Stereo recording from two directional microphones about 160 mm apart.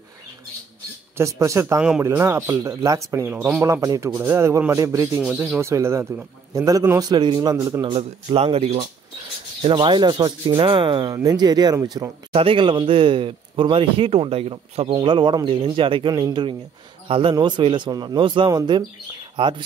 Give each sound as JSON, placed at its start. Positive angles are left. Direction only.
{"t": 1.1, "sound": "a man's voice", "side_deg": -20}
{"t": 1.8, "sound": "speech", "side_deg": -10}
{"t": 5.2, "sound": "a man's voice", "side_deg": -5}
{"t": 7.9, "sound": "a man's voice", "side_deg": -35}
{"t": 12.3, "sound": "a man's voice", "side_deg": -35}